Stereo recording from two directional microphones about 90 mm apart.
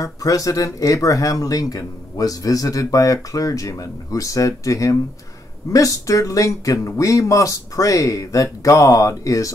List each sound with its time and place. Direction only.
0.0 s speech: 40° left (ahead or behind)